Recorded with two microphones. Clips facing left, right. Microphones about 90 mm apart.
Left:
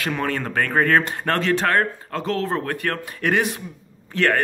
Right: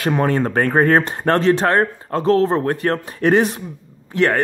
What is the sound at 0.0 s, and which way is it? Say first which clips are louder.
Speech: right 7 dB; 30° right (ahead or behind).